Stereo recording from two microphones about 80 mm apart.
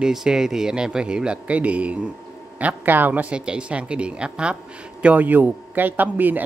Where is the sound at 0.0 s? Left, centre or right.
Centre.